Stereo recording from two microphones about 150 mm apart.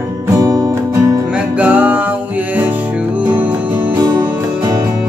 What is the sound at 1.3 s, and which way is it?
Music, 10° right (ahead or behind).